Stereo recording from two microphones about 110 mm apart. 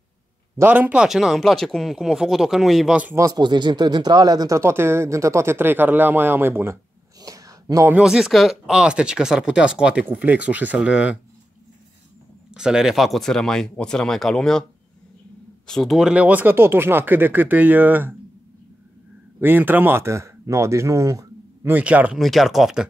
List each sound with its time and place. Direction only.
0.6 s speech: 15° right (ahead or behind)
1.0 s speech: centre (ahead or behind)
3.2 s speech: 35° right (ahead or behind); by 6.8 s 20° right (ahead or behind)
7.2 s a sound: 35° right (ahead or behind)
8.0 s speech: 5° right (ahead or behind)
12.5 s speech: 5° right (ahead or behind)
15.6 s speech: 5° left (ahead or behind)
16.1 s speech: 15° right (ahead or behind)
19.4 s speech: 20° right (ahead or behind)
21.7 s speech: 15° right (ahead or behind)
22.2 s speech: centre (ahead or behind)